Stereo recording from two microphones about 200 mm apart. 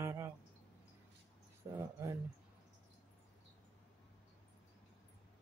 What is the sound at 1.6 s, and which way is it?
Speech, 15° right (ahead or behind).